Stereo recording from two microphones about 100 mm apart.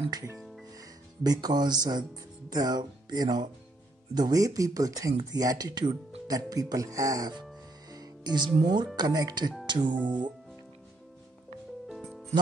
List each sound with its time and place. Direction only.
0.7 s speech: 40° right (ahead or behind)
7.9 s music: 45° right (ahead or behind)
8.6 s speech: 45° right (ahead or behind)
9.9 s speech: 15° right (ahead or behind)
11.9 s music: centre (ahead or behind)